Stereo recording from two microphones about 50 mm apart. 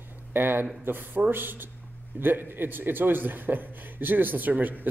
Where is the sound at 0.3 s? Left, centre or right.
Right.